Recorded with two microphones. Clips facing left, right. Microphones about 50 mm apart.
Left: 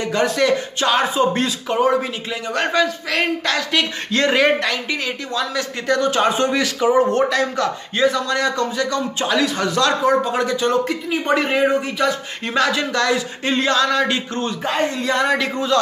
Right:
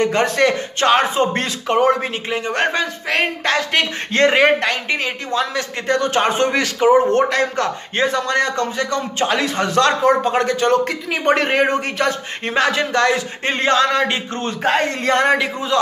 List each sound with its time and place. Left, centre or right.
0.0 s speech: right
10.9 s speech: right
11.2 s speech: right
12.4 s speech: right
14.6 s speech: right
15.3 s a man's voice: right